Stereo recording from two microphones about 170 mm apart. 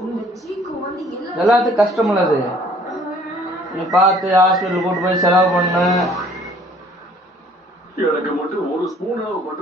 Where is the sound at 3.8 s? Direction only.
Centre (ahead or behind).